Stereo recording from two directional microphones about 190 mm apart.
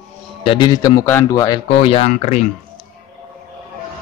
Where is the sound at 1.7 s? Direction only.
30° left (ahead or behind).